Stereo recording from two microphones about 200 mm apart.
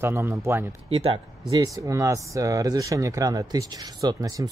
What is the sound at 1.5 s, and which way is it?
Speech, 15° right (ahead or behind).